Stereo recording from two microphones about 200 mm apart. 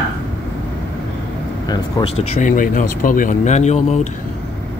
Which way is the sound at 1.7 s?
25° left (ahead or behind).